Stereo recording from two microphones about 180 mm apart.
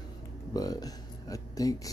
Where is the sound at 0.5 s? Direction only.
20° left (ahead or behind).